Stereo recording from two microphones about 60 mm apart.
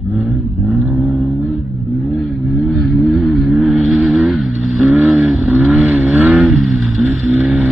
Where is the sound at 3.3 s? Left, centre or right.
Centre.